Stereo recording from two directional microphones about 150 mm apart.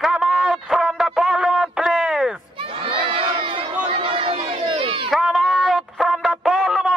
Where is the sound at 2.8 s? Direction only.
35° right (ahead or behind).